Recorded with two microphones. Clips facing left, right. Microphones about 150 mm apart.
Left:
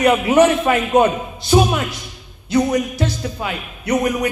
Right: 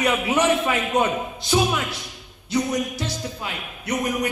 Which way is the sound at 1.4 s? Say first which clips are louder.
Left 6 dB; 40° left (ahead or behind).